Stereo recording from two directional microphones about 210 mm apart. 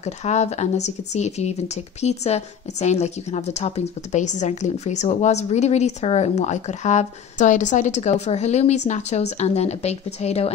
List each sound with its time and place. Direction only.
0.0 s a woman's voice: 30° left (ahead or behind)